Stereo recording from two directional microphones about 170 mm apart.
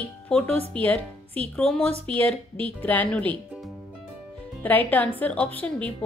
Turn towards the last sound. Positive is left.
turn(degrees=10)  # may be behind; listen again after turning